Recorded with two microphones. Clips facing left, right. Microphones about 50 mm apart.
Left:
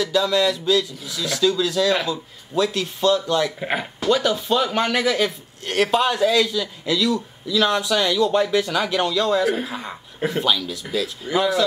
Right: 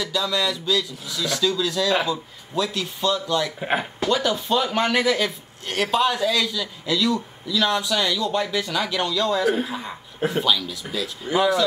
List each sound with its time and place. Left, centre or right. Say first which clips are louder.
0.0 s speech: left 5 dB; centre
3.6 s speech: right 1 dB; centre
4.1 s speech: left 3 dB; centre
7.5 s speech: left 2 dB; centre
11.3 s speech: even; centre